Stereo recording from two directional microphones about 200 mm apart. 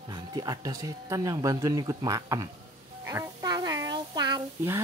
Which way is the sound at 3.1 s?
15° right (ahead or behind).